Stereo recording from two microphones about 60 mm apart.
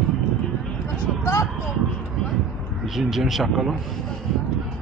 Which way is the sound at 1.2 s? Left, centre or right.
Left.